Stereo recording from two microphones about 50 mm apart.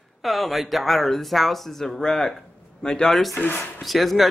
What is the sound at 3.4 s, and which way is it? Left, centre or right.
Speech, left.